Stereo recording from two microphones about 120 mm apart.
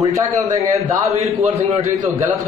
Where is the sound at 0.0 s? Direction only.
30° right (ahead or behind).